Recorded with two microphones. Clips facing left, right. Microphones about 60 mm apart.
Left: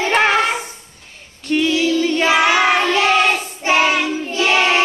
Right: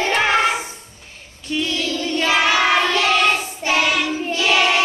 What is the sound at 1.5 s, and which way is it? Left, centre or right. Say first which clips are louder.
Female singing: left 6 dB; left.